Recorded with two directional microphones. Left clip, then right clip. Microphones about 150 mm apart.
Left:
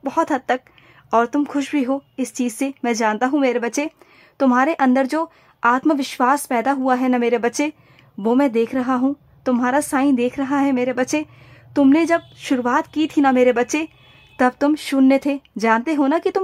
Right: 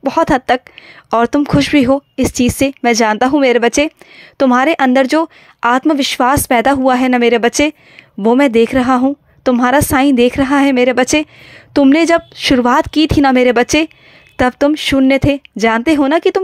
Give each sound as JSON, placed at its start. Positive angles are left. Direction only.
{"t": 0.0, "sound": "a woman's voice", "side_deg": -25}